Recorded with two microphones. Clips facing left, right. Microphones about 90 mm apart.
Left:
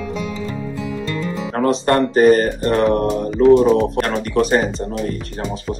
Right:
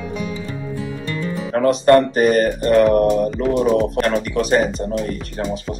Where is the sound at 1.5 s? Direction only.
30° left (ahead or behind).